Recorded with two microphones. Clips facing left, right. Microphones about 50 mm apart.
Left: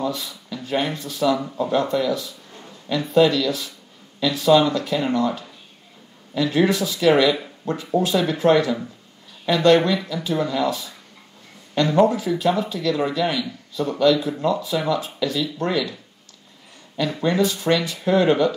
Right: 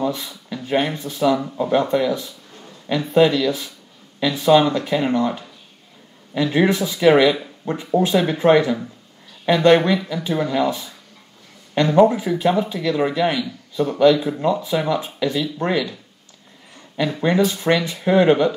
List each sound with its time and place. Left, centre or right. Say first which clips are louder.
0.0 s a sound: right 2 dB; right
0.7 s a man's voice: right 3 dB; right
16.9 s speech: right 2 dB; centre